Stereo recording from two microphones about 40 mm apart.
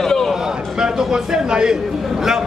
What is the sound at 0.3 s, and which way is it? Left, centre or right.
A man's voice, centre.